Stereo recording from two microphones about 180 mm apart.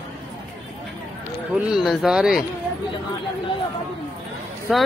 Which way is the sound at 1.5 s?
Centre (ahead or behind).